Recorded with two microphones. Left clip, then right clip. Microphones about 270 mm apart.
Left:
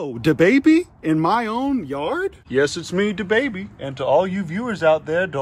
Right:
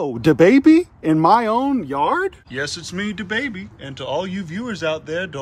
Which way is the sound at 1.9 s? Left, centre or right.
Centre.